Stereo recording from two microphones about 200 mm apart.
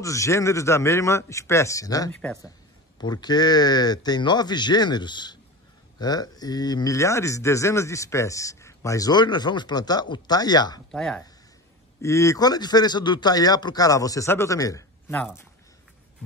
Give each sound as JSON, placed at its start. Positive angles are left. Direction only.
{"t": 0.0, "sound": "speech", "side_deg": 15}
{"t": 10.9, "sound": "speech", "side_deg": 5}
{"t": 12.0, "sound": "speech", "side_deg": 15}